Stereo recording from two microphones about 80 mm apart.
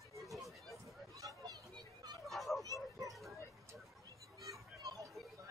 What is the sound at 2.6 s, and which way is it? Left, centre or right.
Bow-wow, left.